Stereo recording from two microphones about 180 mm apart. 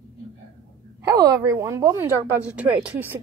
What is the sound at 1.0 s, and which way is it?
Speech, 20° right (ahead or behind).